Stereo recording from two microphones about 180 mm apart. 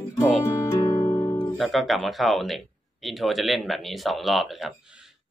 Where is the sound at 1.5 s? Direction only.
Centre (ahead or behind).